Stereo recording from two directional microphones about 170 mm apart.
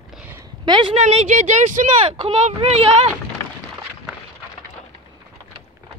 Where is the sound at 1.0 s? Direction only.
40° right (ahead or behind).